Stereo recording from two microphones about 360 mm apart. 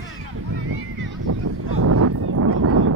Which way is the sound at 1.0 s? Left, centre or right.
Right.